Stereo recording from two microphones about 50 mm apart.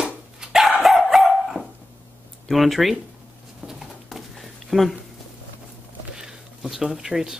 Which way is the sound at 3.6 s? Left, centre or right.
Centre.